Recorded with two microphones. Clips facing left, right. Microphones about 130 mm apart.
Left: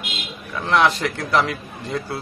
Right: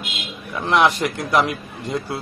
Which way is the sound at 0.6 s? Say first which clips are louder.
Right 1 dB; 15° right (ahead or behind).